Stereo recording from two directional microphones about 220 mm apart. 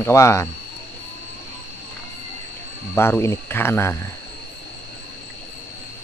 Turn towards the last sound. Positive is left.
turn(degrees=10)  # may be behind; listen again after turning